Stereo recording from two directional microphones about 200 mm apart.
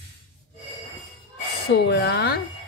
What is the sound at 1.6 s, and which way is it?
Speech, 55° left (ahead or behind).